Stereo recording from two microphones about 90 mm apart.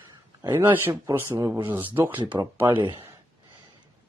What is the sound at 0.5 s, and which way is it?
Speech, 25° right (ahead or behind).